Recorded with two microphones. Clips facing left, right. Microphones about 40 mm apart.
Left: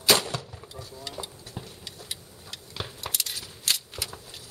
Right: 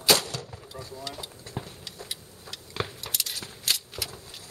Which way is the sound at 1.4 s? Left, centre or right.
Right.